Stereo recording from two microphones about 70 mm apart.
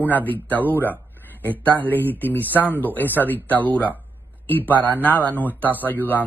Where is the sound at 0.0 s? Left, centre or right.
Left.